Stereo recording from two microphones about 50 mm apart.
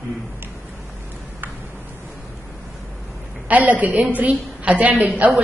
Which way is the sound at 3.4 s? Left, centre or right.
Right.